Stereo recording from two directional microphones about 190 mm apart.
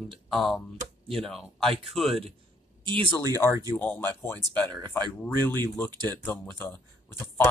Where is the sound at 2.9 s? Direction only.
25° right (ahead or behind).